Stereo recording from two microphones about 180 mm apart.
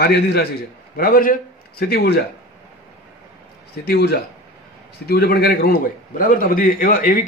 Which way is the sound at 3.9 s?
60° left (ahead or behind).